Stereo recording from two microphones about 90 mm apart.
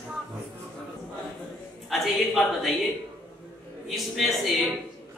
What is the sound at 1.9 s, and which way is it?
A man's voice, centre (ahead or behind).